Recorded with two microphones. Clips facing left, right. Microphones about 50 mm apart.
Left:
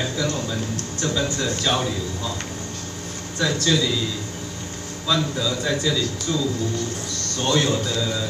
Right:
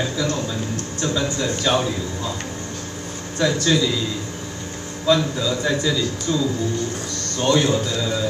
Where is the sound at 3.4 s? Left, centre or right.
Right.